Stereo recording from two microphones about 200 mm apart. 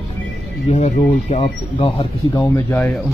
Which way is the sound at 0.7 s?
35° left (ahead or behind).